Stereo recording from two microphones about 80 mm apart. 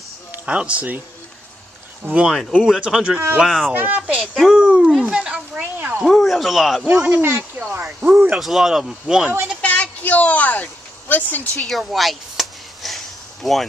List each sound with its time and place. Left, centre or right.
0.3 s speech: centre
2.1 s speech: centre
3.7 s speech: right
5.6 s a sound: right
6.0 s speech: centre
6.9 s speech: centre
7.2 s speech: right
8.0 s speech: centre
8.4 s speech: centre
9.6 s a sound: centre
11.6 s a sound: centre